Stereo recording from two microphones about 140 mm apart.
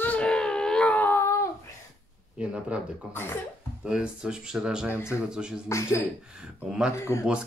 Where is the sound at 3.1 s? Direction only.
15° left (ahead or behind).